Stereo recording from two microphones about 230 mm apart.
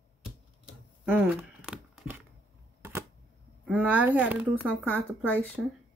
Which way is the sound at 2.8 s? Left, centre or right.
Centre.